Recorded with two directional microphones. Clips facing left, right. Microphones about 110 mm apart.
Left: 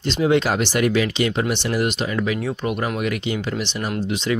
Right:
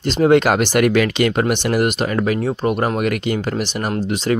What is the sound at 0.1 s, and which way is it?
Speech, 50° right (ahead or behind).